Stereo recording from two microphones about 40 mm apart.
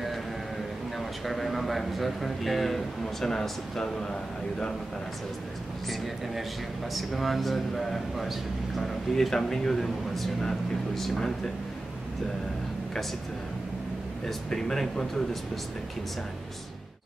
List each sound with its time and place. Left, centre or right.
0.9 s a man's voice: centre
6.9 s a man's voice: centre
14.2 s a man's voice: centre